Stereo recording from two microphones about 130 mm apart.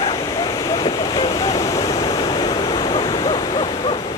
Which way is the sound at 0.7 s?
35° left (ahead or behind).